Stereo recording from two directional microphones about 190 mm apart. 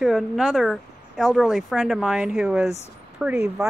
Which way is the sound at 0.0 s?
Centre (ahead or behind).